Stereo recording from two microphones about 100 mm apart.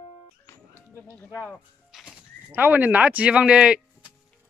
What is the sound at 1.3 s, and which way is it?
Speech, 20° left (ahead or behind).